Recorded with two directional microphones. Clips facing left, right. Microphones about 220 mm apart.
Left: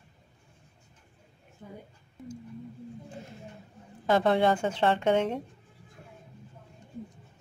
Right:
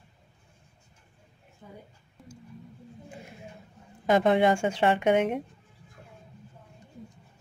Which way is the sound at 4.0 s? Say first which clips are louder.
Right 2 dB; 15° right (ahead or behind).